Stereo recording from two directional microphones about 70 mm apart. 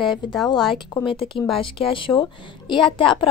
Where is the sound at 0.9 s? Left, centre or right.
Left.